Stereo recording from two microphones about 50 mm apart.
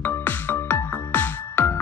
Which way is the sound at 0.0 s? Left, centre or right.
Left.